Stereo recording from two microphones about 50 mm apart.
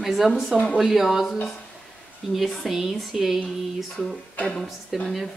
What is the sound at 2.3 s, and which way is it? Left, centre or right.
Speech, centre.